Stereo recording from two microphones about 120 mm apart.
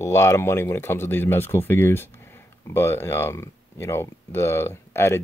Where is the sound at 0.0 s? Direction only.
25° left (ahead or behind).